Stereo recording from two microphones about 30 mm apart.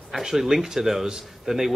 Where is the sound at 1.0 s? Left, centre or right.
Right.